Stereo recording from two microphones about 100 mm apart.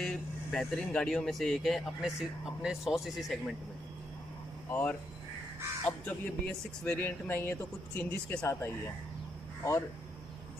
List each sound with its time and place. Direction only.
0.0 s speech: 5° left (ahead or behind)
4.6 s a man's voice: 15° left (ahead or behind)